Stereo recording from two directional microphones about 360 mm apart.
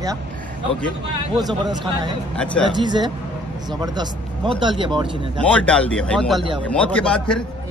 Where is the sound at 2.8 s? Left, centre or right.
Centre.